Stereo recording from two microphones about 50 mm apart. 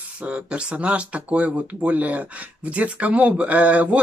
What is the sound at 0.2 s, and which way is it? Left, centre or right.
Speech, right.